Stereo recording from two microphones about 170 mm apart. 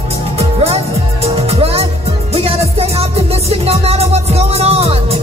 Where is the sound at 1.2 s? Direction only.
35° right (ahead or behind).